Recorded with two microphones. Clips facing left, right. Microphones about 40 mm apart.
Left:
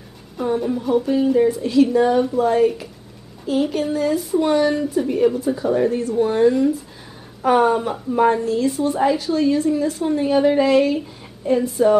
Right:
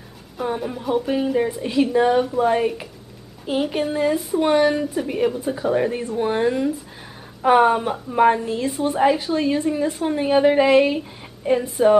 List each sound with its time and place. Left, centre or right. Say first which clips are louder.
0.4 s a woman's voice: left 4 dB; centre